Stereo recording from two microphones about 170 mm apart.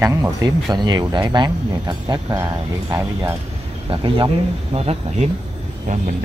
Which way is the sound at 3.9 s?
30° right (ahead or behind).